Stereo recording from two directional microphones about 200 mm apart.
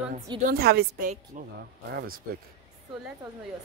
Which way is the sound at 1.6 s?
50° right (ahead or behind).